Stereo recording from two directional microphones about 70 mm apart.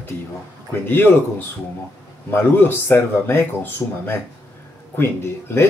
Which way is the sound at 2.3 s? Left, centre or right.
Left.